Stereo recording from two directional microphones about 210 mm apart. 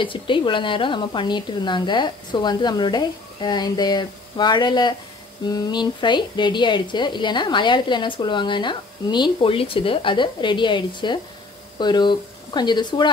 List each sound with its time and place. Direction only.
0.0 s a woman's voice: 25° left (ahead or behind)